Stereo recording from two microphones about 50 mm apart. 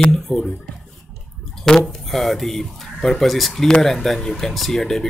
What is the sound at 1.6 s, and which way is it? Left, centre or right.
Speech, centre.